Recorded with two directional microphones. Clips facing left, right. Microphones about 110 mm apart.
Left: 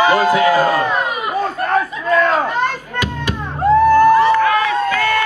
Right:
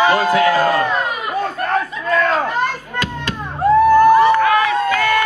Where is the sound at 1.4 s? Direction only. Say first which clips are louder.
Left 3 dB; 5° left (ahead or behind).